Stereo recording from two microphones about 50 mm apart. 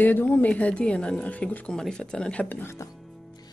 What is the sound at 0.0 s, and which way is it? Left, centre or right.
A woman's voice, left.